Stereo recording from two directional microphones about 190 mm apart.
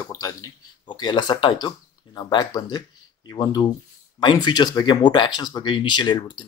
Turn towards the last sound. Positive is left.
turn(degrees=25)  # may be behind; listen again after turning